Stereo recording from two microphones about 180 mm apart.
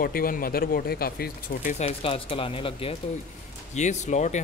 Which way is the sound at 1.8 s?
35° left (ahead or behind).